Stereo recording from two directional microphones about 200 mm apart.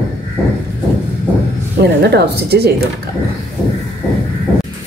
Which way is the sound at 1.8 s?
55° right (ahead or behind).